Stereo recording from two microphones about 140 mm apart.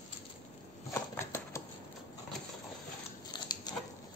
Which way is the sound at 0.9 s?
20° left (ahead or behind).